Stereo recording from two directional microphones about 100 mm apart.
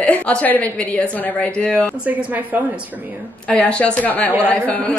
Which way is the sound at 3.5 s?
10° left (ahead or behind).